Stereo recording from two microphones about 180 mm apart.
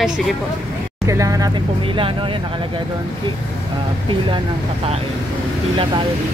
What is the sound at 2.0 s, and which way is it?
Speech, 30° right (ahead or behind).